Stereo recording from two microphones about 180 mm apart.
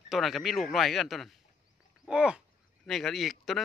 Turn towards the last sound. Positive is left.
turn(degrees=0)  # may be behind; listen again after turning